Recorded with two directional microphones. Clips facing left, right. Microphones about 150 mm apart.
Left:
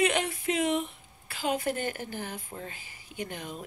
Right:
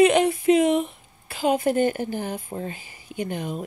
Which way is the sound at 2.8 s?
20° right (ahead or behind).